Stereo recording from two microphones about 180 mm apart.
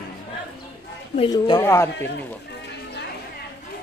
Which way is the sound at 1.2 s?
30° left (ahead or behind).